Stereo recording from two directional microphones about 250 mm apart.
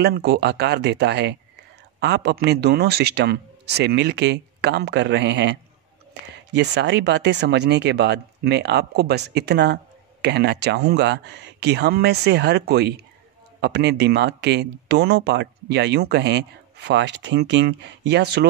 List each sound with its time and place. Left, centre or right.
0.0 s a man's voice: right